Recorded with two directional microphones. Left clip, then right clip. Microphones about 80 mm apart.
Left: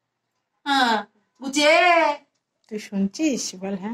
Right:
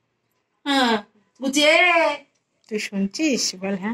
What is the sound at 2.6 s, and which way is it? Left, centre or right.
Speech, left.